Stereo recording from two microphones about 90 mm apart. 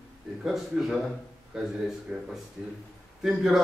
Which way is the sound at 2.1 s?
15° right (ahead or behind).